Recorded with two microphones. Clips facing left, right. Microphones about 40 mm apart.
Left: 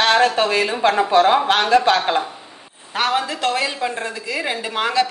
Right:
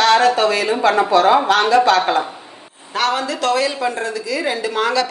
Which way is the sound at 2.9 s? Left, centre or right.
Left.